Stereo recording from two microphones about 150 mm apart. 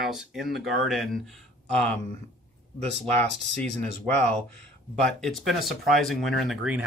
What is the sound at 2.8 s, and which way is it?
Speech, 45° right (ahead or behind).